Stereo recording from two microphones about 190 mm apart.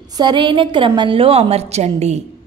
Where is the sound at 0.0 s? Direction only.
20° right (ahead or behind).